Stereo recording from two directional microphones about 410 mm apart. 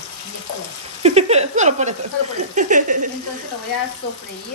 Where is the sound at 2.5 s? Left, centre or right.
Centre.